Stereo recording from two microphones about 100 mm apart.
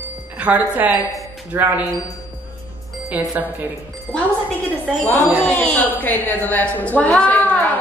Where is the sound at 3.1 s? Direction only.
15° right (ahead or behind).